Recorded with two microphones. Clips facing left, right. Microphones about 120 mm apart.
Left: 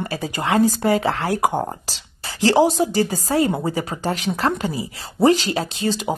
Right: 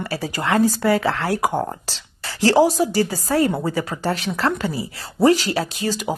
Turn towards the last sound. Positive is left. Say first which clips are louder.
# left 1 dB
turn(degrees=25)  # may be behind; listen again after turning